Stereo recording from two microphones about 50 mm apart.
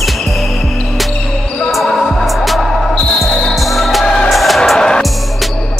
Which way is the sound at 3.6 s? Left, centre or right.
Centre.